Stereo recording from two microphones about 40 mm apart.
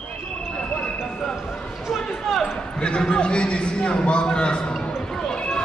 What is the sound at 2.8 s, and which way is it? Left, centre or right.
A man's voice, left.